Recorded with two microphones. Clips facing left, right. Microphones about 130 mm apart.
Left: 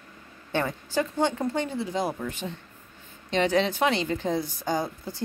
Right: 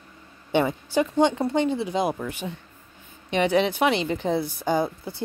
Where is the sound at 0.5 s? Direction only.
15° right (ahead or behind).